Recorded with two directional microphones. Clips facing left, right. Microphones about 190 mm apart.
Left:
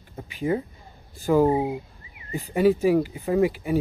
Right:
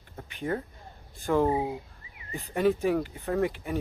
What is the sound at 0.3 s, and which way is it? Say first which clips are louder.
Speech: left 6 dB; 5° left (ahead or behind).